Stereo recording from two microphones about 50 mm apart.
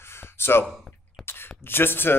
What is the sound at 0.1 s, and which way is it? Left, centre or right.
Gasp, left.